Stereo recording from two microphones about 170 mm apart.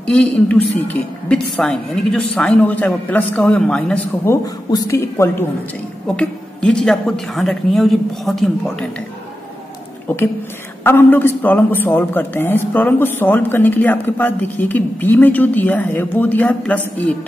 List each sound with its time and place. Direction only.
0.0 s a man's voice: 5° left (ahead or behind)
4.6 s a man's voice: 20° left (ahead or behind)
6.0 s a woman's voice: 5° left (ahead or behind)
10.0 s a woman's voice: 10° left (ahead or behind)